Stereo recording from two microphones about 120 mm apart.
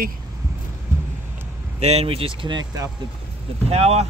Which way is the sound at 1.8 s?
60° right (ahead or behind).